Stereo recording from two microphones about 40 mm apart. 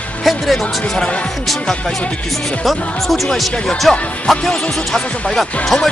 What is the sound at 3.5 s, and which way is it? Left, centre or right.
Speech, left.